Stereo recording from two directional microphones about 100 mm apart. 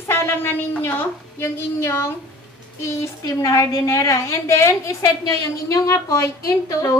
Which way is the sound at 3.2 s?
35° left (ahead or behind).